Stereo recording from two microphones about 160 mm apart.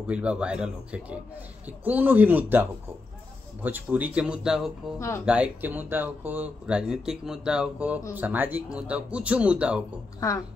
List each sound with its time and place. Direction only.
0.0 s speech: 5° right (ahead or behind)
4.9 s speech: 15° left (ahead or behind)
5.2 s speech: 10° right (ahead or behind)